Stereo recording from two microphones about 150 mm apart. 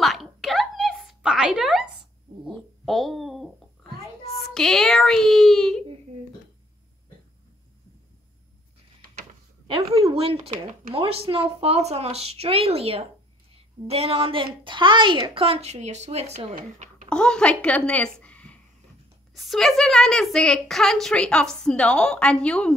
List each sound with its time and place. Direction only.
0.0 s a sound: centre (ahead or behind)
4.4 s a woman's voice: 5° left (ahead or behind)
9.7 s a woman's voice: 40° right (ahead or behind)
15.4 s a woman's voice: 45° right (ahead or behind)
16.5 s a sound: 55° right (ahead or behind)
17.1 s a woman's voice: 5° left (ahead or behind)